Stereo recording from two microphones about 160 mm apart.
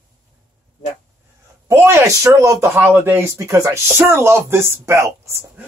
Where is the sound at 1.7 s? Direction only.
15° right (ahead or behind).